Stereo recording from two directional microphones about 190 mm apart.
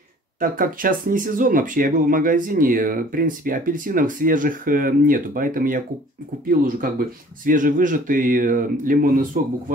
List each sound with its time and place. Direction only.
0.4 s speech: 45° right (ahead or behind)